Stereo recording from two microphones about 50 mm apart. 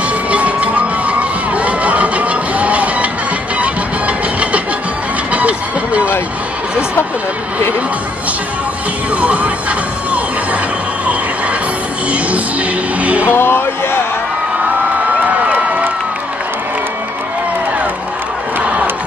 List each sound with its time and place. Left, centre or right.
0.3 s crowd: right
5.3 s music: right
9.2 s speech: right
13.0 s music: right
13.3 s music: left
15.5 s crowd: right
18.6 s crowd: right